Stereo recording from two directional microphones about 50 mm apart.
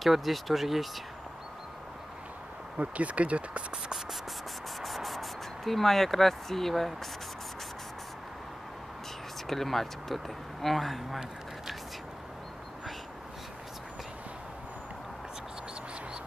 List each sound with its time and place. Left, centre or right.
0.0 s speech: centre
2.8 s speech: right
4.8 s speech: centre
9.5 s speech: centre